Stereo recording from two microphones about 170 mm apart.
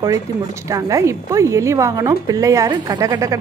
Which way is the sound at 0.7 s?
20° right (ahead or behind).